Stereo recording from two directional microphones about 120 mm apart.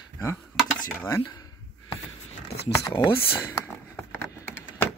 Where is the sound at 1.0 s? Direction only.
25° left (ahead or behind).